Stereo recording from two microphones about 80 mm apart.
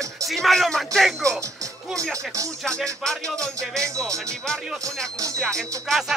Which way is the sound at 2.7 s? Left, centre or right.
Centre.